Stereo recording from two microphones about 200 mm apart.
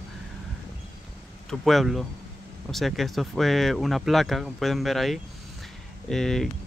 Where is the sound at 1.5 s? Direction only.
Centre (ahead or behind).